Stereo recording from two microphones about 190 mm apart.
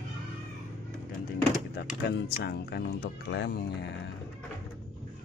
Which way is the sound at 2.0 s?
60° left (ahead or behind).